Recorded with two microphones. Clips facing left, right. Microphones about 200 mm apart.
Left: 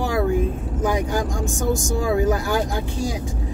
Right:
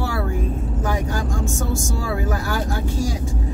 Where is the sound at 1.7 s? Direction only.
15° left (ahead or behind).